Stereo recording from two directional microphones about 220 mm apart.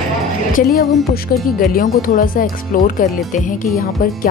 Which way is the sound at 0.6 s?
45° left (ahead or behind).